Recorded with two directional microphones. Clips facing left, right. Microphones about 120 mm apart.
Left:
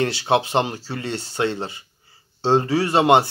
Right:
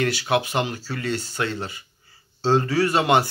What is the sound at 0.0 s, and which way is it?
Speech, 25° left (ahead or behind).